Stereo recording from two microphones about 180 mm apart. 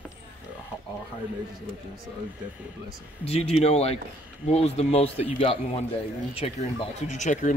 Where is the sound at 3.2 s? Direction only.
35° left (ahead or behind).